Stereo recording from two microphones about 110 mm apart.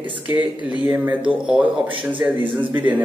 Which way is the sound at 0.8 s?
15° right (ahead or behind).